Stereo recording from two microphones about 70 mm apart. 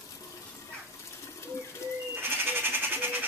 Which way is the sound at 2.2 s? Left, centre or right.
Right.